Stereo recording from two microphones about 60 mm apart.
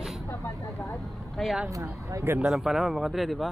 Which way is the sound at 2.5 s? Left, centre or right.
Centre.